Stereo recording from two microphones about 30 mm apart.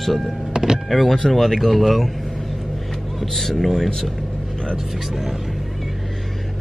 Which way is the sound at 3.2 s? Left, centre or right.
Centre.